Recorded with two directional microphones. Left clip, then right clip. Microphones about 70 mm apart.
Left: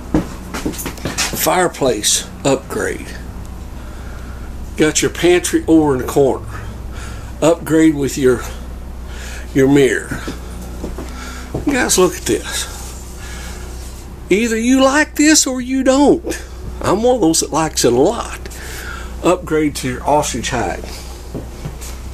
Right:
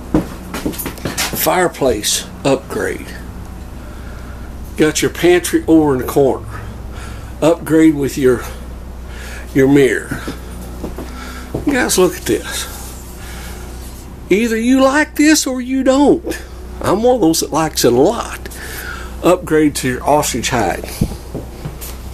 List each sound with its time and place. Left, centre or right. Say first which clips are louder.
1.3 s speech: right 1 dB; centre
4.7 s speech: right 1 dB; centre
9.5 s speech: right 1 dB; centre
11.1 s a sound: right 1 dB; centre
14.3 s speech: right 1 dB; centre
19.2 s speech: right 3 dB; right